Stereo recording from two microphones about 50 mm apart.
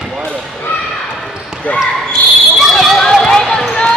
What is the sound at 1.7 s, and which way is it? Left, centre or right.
Speech, left.